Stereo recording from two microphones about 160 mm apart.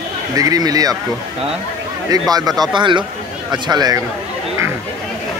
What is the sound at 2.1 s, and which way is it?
Speech, 25° right (ahead or behind).